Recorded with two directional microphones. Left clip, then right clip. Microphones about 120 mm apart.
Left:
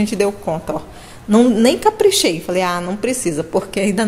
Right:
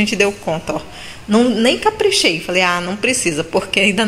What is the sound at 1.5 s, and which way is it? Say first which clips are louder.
A woman's voice: left 1 dB; 35° left (ahead or behind).